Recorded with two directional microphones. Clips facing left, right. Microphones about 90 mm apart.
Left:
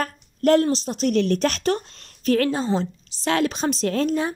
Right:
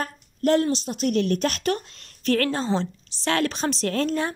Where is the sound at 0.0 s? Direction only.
50° left (ahead or behind); by 2.0 s 30° left (ahead or behind).